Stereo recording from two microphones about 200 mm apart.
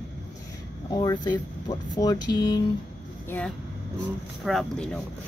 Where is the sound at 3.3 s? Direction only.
5° left (ahead or behind).